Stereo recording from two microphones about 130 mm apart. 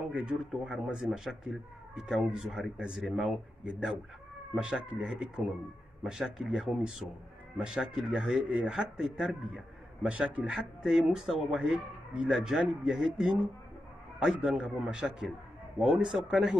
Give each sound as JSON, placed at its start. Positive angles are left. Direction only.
{"t": 0.1, "sound": "speech", "side_deg": -10}